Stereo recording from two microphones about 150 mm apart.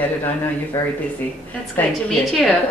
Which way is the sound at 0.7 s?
20° left (ahead or behind).